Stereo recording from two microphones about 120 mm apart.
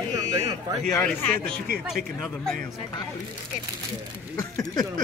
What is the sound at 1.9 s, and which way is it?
Speech, centre (ahead or behind).